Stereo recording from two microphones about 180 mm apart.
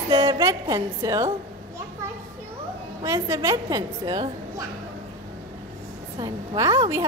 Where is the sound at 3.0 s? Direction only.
15° right (ahead or behind).